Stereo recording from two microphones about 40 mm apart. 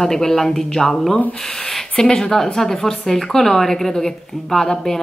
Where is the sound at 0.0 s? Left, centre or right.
Centre.